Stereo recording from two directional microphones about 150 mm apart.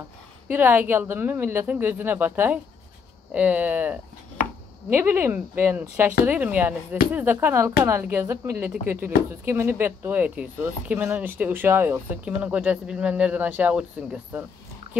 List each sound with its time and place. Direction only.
0.5 s speech: 10° right (ahead or behind)